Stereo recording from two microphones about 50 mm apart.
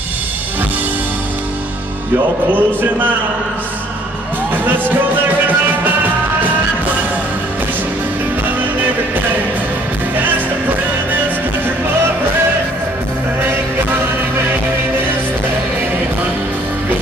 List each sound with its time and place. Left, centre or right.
2.5 s a man's voice: right